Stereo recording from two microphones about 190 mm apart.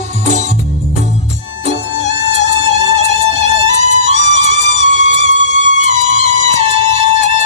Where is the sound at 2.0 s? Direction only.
35° right (ahead or behind).